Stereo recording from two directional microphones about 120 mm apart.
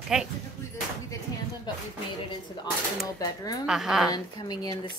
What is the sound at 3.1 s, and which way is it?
Speech, 30° left (ahead or behind).